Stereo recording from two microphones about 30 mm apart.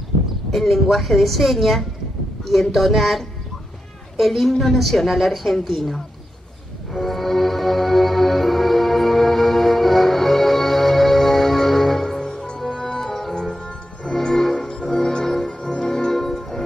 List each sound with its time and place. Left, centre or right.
0.5 s speech: centre
6.9 s music: centre
12.5 s music: centre
14.3 s music: centre
16.1 s music: centre